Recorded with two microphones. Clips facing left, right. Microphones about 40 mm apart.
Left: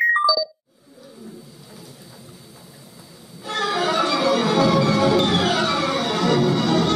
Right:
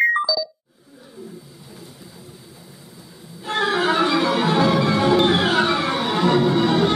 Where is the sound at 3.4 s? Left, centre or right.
Right.